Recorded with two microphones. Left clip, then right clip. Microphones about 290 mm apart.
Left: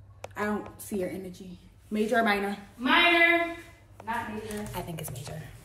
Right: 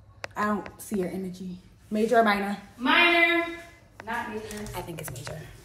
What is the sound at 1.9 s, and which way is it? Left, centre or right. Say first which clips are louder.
Speech: right 4 dB; centre.